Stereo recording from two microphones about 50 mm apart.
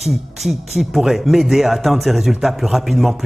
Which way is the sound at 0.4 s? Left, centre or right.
Centre.